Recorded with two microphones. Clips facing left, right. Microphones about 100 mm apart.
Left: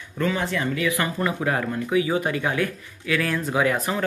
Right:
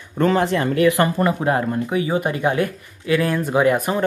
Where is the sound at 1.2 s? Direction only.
30° right (ahead or behind); by 4.0 s 15° right (ahead or behind).